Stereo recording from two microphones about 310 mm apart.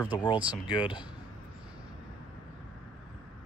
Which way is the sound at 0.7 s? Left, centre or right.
Centre.